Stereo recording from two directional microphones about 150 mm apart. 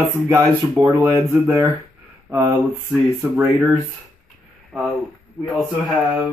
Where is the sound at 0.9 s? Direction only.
20° right (ahead or behind).